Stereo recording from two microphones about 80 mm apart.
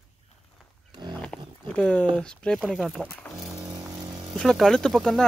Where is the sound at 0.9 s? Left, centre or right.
Right.